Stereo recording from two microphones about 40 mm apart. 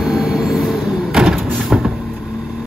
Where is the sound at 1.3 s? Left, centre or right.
Centre.